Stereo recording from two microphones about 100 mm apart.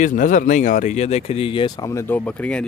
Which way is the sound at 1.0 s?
90° left.